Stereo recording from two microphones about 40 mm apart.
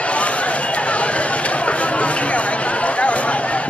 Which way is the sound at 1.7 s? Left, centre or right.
Left.